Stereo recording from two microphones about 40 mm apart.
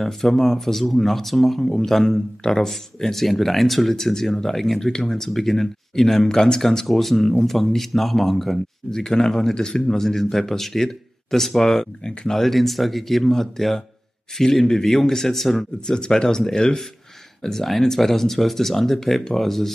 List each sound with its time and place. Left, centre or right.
0.0 s speech: centre
15.9 s speech: centre